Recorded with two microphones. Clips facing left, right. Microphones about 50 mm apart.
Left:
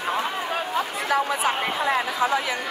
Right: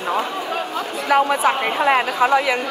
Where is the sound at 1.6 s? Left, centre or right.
Right.